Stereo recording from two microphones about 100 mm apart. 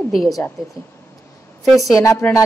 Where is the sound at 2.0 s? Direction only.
30° left (ahead or behind).